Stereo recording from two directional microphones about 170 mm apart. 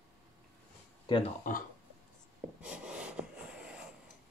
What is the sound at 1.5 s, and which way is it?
Speech, 50° left (ahead or behind).